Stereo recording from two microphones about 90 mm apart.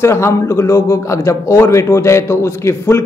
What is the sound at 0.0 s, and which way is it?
Speech, 30° left (ahead or behind).